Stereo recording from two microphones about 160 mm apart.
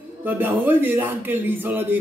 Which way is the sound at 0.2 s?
15° right (ahead or behind).